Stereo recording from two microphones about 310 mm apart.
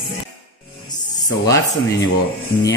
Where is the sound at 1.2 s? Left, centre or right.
Centre.